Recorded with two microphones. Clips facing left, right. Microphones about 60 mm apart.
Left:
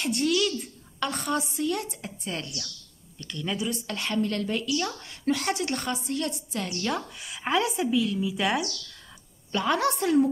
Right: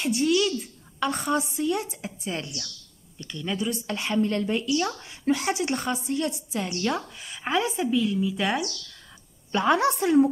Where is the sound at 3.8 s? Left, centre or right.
Centre.